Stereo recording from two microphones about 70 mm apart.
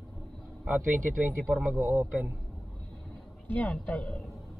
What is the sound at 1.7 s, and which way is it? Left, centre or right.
Speech, right.